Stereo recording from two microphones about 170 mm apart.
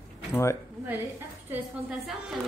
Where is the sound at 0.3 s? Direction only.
15° left (ahead or behind).